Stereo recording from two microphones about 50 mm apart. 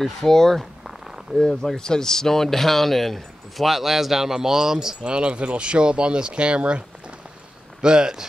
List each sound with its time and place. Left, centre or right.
0.0 s speech: centre
0.8 s a sound: centre
1.8 s speech: centre; by 6.8 s right
7.8 s speech: centre